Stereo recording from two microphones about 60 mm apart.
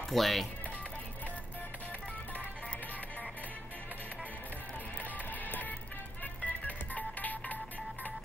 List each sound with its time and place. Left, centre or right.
0.1 s speech: centre
5.3 s music: left